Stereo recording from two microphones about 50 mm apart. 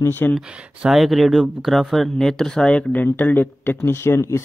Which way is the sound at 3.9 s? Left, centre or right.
Left.